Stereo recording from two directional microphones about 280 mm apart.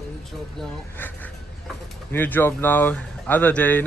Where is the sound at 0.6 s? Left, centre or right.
Centre.